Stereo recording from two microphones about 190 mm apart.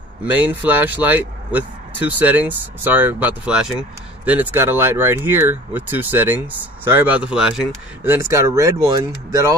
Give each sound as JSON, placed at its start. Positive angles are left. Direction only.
{"t": 0.2, "sound": "speech", "side_deg": -10}